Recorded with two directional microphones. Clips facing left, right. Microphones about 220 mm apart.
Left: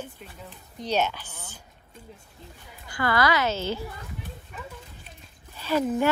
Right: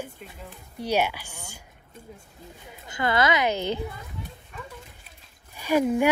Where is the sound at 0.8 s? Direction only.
10° right (ahead or behind).